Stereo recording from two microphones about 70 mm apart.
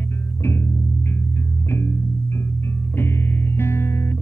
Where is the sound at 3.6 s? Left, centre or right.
Left.